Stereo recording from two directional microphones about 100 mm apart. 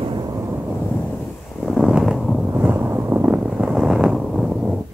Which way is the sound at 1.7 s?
5° right (ahead or behind).